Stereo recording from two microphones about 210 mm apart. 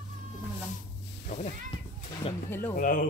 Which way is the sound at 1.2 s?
30° left (ahead or behind).